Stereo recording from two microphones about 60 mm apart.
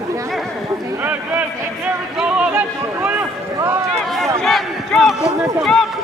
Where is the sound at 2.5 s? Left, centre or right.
Right.